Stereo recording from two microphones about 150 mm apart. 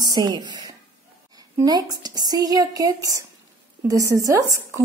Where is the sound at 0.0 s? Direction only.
25° right (ahead or behind).